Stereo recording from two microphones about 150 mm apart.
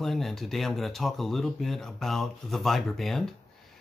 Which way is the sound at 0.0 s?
Centre (ahead or behind).